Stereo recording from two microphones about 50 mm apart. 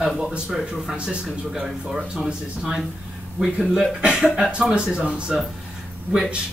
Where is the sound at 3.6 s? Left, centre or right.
Centre.